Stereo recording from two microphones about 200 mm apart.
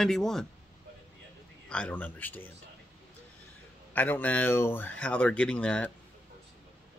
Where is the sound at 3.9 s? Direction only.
10° left (ahead or behind).